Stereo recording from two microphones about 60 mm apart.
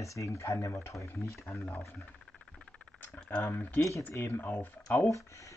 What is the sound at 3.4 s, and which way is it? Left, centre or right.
Speech, left.